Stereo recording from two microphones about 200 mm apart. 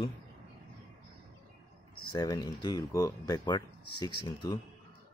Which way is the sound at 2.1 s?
20° left (ahead or behind).